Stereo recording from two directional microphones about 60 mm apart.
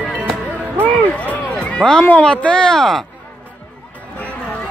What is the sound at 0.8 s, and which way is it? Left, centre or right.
Run, left.